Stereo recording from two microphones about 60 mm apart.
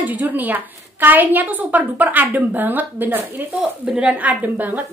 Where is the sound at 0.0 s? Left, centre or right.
Right.